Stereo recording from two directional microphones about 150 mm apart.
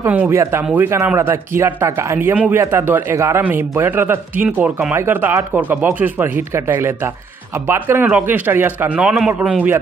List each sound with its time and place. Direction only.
0.0 s a man's voice: 15° right (ahead or behind)